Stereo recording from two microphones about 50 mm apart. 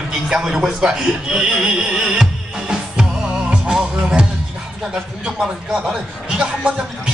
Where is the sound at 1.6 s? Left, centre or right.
Centre.